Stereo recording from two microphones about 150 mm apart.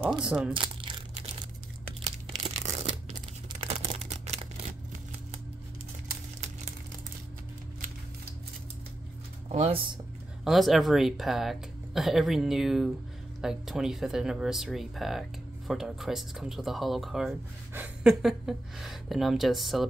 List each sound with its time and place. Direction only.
0.2 s speech: 5° right (ahead or behind)
0.7 s crumpling: 35° right (ahead or behind)
2.0 s tearing: 45° right (ahead or behind)
3.6 s a sound: 45° right (ahead or behind)
9.5 s speech: 40° right (ahead or behind)
10.4 s speech: centre (ahead or behind)